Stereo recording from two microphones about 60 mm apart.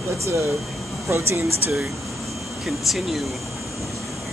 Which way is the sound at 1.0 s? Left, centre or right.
Right.